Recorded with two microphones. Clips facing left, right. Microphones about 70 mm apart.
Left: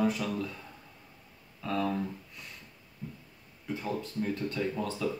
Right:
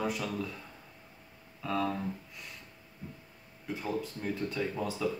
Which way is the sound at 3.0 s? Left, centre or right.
Right.